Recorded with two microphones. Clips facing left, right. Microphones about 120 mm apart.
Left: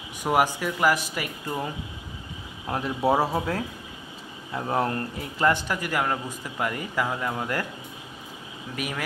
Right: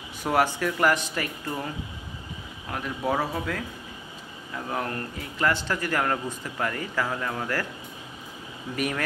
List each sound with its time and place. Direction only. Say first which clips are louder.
0.2 s a man's voice: left 1 dB; 15° left (ahead or behind)
2.7 s speech: left 4 dB; 30° left (ahead or behind)
5.5 s a man's voice: left 1 dB; 15° left (ahead or behind)
8.7 s speech: right 3 dB; 5° left (ahead or behind)